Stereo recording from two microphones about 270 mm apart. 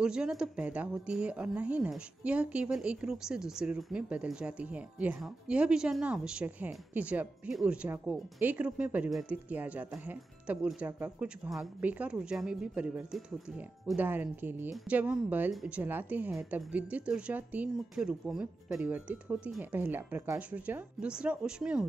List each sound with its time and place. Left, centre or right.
0.0 s speech: centre